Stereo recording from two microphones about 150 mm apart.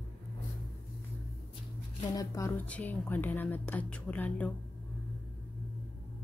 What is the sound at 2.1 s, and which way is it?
Speech, 20° left (ahead or behind).